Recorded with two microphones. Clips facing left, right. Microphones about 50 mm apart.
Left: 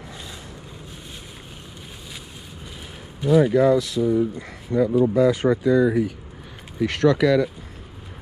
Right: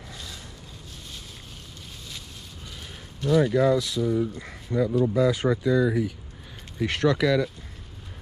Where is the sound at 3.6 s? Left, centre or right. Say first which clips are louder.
Left 4 dB; left.